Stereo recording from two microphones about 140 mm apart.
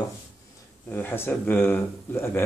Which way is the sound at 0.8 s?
15° left (ahead or behind).